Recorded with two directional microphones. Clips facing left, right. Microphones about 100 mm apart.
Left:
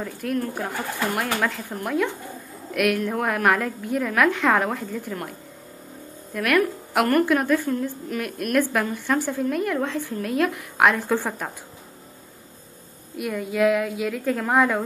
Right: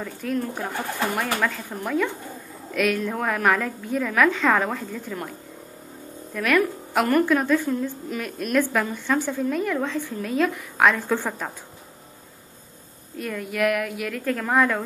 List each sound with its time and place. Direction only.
0.0 s a woman's voice: 5° left (ahead or behind)
6.3 s a woman's voice: 5° left (ahead or behind)
13.1 s a woman's voice: 15° left (ahead or behind)